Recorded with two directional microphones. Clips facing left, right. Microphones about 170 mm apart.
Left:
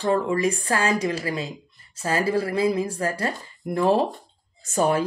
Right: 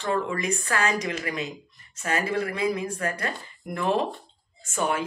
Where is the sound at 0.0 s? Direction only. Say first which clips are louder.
Left 5 dB; 35° left (ahead or behind).